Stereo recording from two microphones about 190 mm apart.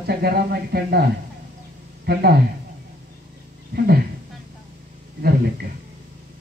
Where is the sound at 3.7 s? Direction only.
55° right (ahead or behind).